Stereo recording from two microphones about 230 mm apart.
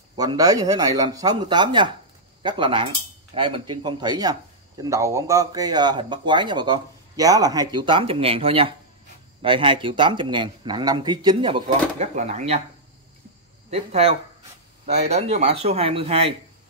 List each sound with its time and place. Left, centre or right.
0.1 s speech: centre
13.7 s speech: right